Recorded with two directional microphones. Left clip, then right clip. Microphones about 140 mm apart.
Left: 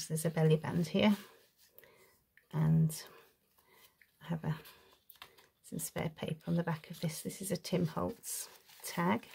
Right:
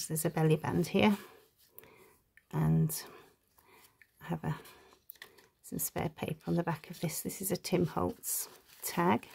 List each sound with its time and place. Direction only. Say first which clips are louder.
0.1 s speech: right 1 dB; 45° right (ahead or behind)
2.5 s speech: right 2 dB; 40° right (ahead or behind)
5.7 s speech: right 3 dB; 45° right (ahead or behind)